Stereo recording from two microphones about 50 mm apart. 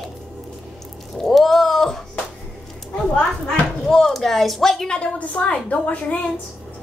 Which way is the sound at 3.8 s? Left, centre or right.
Centre.